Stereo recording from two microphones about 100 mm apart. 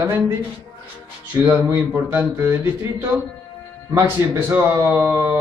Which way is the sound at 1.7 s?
25° right (ahead or behind).